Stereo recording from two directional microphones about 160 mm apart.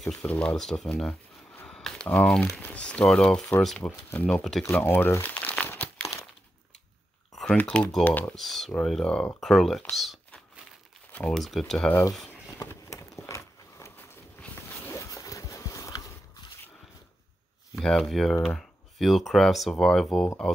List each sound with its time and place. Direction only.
0.0 s speech: 5° left (ahead or behind)
4.6 s crumpling: 15° left (ahead or behind)
7.3 s speech: 5° left (ahead or behind)
11.1 s crumpling: 10° left (ahead or behind)
11.3 s speech: centre (ahead or behind)
12.3 s a sound: 15° left (ahead or behind)
13.3 s dog: 15° left (ahead or behind)
14.4 s a sound: 15° left (ahead or behind)
17.7 s speech: centre (ahead or behind)